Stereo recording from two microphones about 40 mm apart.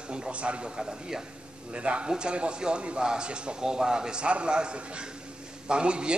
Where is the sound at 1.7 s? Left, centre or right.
Right.